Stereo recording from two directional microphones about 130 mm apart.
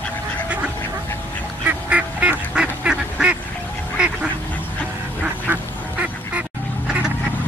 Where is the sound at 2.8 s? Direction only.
10° right (ahead or behind).